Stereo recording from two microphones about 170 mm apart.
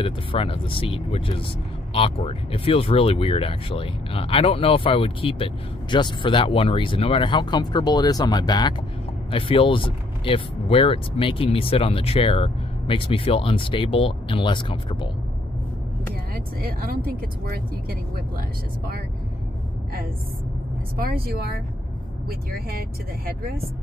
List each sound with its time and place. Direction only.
0.0 s speech: 30° left (ahead or behind)
16.1 s speech: 60° right (ahead or behind)
21.0 s speech: 65° right (ahead or behind)